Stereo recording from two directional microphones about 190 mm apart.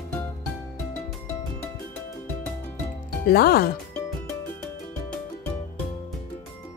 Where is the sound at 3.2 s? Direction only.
55° left (ahead or behind).